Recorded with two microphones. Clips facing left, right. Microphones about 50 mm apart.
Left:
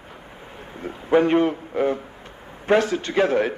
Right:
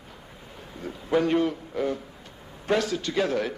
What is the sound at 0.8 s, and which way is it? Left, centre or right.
A man's voice, left.